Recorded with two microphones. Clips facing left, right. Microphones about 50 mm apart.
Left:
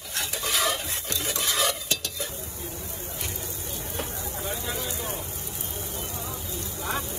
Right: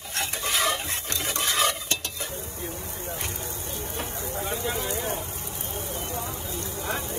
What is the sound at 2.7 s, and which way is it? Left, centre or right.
Hubbub, right.